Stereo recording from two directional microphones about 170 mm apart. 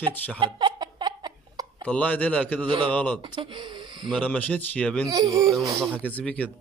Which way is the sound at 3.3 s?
30° right (ahead or behind).